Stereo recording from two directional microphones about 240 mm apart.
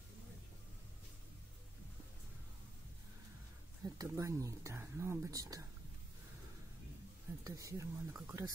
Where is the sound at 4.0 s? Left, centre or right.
Centre.